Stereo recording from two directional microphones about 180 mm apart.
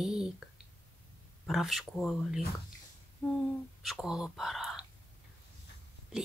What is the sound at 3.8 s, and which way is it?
Speech, centre (ahead or behind).